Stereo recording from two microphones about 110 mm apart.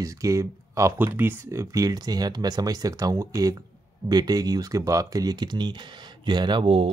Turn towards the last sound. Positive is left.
turn(degrees=-50)  # may be behind; listen again after turning